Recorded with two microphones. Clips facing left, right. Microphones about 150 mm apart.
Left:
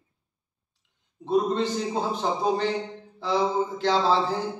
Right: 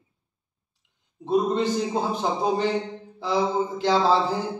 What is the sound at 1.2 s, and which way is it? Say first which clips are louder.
Speech: right 1 dB; 15° right (ahead or behind).